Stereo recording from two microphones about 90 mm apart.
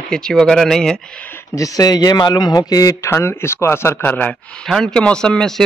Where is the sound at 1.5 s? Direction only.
45° left (ahead or behind); by 4.2 s 20° left (ahead or behind).